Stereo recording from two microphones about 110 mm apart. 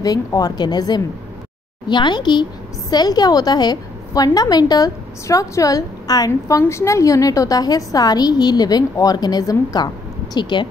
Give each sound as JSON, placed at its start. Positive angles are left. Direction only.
{"t": 0.0, "sound": "a woman's voice", "side_deg": 35}